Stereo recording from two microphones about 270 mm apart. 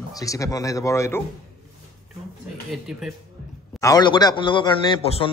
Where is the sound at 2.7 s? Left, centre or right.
Centre.